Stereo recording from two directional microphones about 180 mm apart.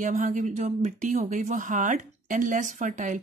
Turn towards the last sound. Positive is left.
turn(degrees=-45)  # may be behind; listen again after turning